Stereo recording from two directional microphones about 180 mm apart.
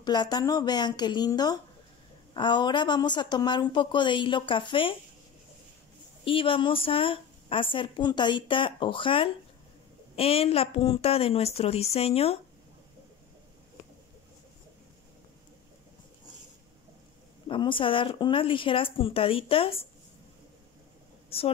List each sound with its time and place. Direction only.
0.0 s a woman's voice: 25° left (ahead or behind)
6.2 s a woman's voice: 30° left (ahead or behind)
17.5 s speech: 30° left (ahead or behind)